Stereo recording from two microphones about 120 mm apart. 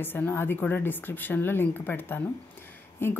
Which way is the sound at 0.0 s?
15° left (ahead or behind).